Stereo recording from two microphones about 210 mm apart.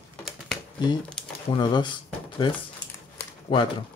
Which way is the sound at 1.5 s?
20° left (ahead or behind).